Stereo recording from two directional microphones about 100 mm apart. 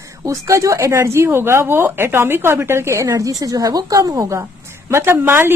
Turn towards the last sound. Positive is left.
turn(degrees=-20)  # may be behind; listen again after turning